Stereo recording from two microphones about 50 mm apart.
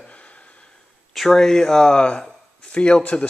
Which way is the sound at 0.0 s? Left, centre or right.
Left.